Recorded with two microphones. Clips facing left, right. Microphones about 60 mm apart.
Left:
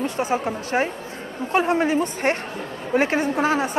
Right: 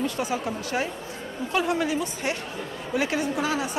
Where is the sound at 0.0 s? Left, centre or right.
Left.